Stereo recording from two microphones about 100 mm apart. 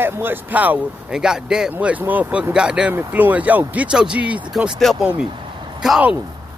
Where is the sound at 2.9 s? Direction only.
20° right (ahead or behind).